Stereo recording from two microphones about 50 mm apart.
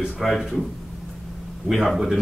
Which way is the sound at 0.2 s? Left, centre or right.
Centre.